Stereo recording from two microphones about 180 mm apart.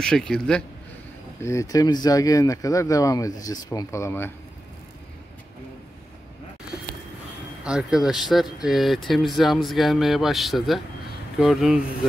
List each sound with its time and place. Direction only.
0.0 s speech: 5° left (ahead or behind)
1.4 s speech: 15° left (ahead or behind)
7.6 s speech: 5° right (ahead or behind)